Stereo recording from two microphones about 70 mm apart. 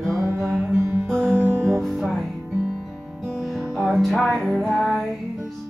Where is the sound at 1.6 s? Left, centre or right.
Centre.